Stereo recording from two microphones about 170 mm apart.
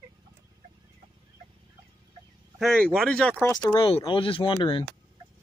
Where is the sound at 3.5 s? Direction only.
25° left (ahead or behind).